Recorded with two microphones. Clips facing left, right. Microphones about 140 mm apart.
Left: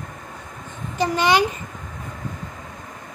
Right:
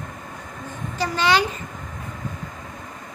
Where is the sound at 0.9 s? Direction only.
20° left (ahead or behind).